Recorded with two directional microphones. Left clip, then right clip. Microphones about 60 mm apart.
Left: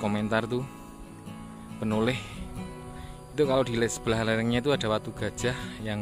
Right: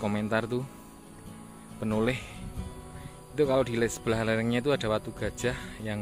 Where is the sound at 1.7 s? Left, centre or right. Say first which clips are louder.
Left 1 dB; left.